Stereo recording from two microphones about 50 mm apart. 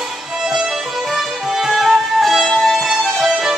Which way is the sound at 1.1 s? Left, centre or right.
Centre.